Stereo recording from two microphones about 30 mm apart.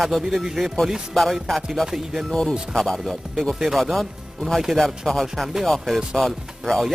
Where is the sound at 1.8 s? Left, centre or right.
Centre.